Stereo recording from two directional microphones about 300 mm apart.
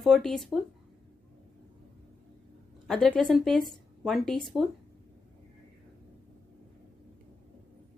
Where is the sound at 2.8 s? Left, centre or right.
Centre.